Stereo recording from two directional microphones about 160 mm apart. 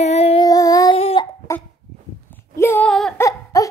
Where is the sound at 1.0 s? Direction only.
40° left (ahead or behind).